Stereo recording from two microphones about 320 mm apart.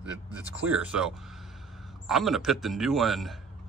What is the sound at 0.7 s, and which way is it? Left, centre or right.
Speech, centre.